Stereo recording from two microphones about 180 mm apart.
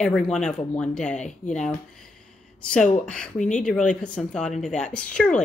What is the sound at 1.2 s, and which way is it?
Speech, 40° left (ahead or behind).